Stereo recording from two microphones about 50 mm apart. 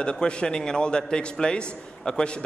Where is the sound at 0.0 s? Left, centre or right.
Centre.